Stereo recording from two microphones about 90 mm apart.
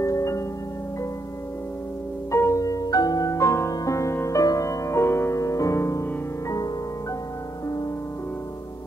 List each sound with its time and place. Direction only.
0.0 s music: 35° left (ahead or behind)
2.3 s music: 35° left (ahead or behind)